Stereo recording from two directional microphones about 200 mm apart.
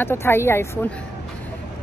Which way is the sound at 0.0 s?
10° left (ahead or behind).